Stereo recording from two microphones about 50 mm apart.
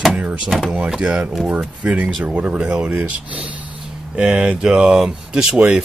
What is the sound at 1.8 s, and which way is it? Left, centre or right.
Speech, right.